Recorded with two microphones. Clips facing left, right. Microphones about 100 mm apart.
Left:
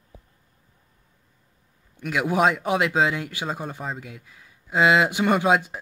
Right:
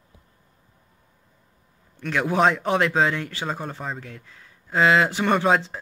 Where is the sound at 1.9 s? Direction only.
10° left (ahead or behind).